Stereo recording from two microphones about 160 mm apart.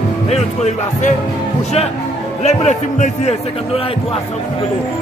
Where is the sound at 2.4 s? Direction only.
45° left (ahead or behind).